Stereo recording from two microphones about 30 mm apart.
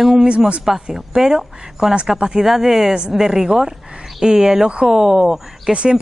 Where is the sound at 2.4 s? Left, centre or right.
Centre.